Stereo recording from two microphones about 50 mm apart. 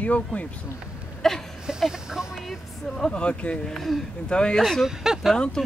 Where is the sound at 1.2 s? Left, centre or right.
Centre.